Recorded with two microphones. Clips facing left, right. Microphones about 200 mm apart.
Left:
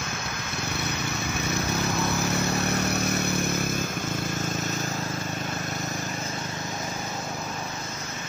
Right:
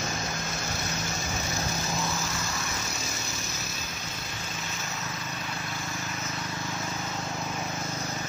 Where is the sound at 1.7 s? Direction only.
60° left (ahead or behind).